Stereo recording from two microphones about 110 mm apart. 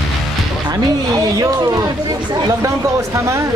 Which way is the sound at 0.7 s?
35° right (ahead or behind).